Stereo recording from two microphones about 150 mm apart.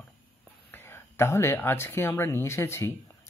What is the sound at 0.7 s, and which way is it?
Speech, 15° left (ahead or behind).